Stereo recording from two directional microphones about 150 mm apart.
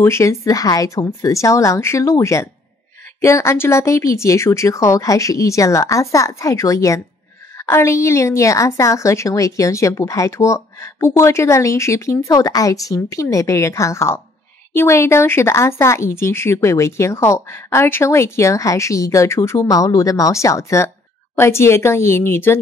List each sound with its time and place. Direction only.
0.0 s a woman's voice: 20° left (ahead or behind)